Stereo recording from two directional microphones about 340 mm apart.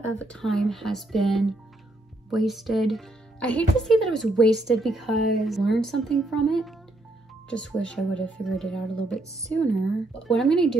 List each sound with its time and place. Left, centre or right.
0.0 s speech: centre